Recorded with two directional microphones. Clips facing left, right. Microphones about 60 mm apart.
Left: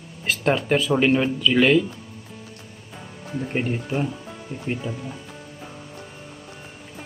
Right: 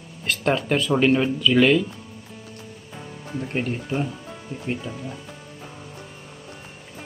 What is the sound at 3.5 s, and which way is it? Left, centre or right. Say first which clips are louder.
Speech: left 1 dB; centre.